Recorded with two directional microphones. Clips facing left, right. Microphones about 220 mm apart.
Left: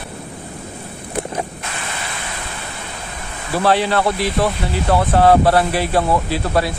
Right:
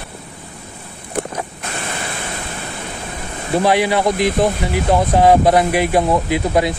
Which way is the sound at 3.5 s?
15° right (ahead or behind).